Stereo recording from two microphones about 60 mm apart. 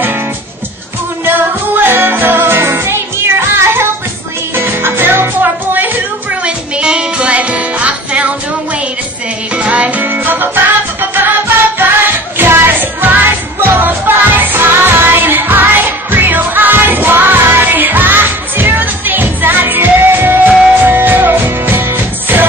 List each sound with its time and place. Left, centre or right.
1.2 s music: right
6.4 s music: centre
9.6 s music: right